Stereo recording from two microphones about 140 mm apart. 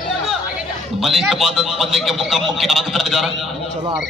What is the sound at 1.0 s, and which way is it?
A man's voice, centre (ahead or behind).